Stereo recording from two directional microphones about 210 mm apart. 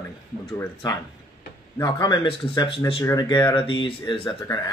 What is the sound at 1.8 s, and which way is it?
Speech, 20° left (ahead or behind).